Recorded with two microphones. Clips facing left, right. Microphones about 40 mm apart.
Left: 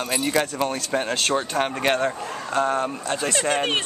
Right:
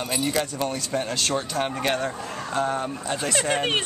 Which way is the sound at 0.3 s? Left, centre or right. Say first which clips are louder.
Left 3 dB; left.